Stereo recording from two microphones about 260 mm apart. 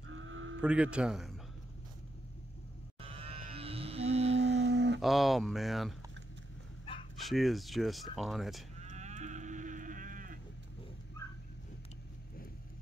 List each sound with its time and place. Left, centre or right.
0.1 s a sound: right
0.6 s speech: centre
3.0 s cattle: right
4.4 s a sound: right
5.0 s speech: centre
7.2 s speech: centre
8.8 s livestock: right